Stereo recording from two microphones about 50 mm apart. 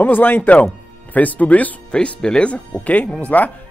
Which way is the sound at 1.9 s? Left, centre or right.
Left.